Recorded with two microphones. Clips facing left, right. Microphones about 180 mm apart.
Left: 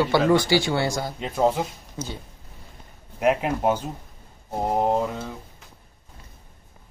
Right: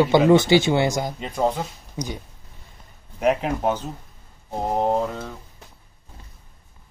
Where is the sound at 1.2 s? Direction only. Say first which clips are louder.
Left 3 dB; centre (ahead or behind).